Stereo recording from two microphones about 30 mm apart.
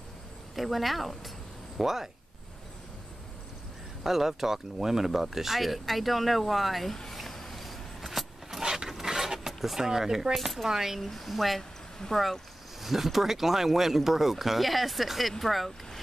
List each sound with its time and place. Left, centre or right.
0.6 s speech: centre
1.8 s speech: centre
4.0 s speech: centre
7.1 s a sound: centre
8.5 s mechanisms: centre
9.5 s vehicle: centre
9.8 s speech: centre
11.1 s speech: centre
12.8 s speech: centre